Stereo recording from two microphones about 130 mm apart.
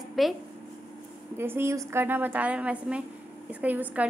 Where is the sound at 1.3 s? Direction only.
20° right (ahead or behind).